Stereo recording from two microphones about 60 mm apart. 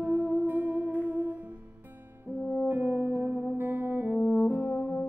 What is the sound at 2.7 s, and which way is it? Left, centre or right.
French horn, right.